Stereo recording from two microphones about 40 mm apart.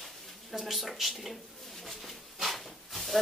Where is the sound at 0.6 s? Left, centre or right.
Centre.